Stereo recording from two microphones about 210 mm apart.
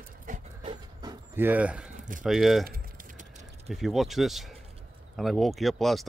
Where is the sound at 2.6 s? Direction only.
40° right (ahead or behind).